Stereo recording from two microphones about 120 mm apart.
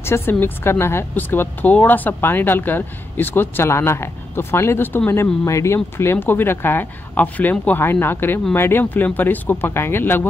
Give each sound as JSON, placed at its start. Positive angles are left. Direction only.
{"t": 0.0, "sound": "speech", "side_deg": 20}